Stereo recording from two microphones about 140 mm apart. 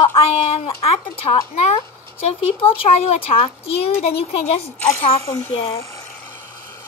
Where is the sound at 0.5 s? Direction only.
45° left (ahead or behind).